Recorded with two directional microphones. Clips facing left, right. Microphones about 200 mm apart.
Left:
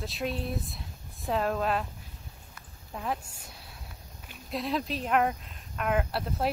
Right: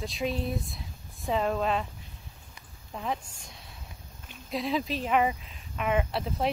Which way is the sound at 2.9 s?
Centre (ahead or behind).